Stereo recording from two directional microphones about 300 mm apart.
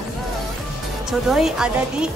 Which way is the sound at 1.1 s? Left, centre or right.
Centre.